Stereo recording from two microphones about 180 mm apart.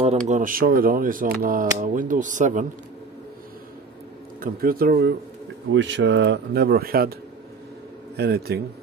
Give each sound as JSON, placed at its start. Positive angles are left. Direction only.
{"t": 0.0, "sound": "speech", "side_deg": -40}
{"t": 4.4, "sound": "speech", "side_deg": -55}
{"t": 5.7, "sound": "speech", "side_deg": -90}
{"t": 8.2, "sound": "speech", "side_deg": -60}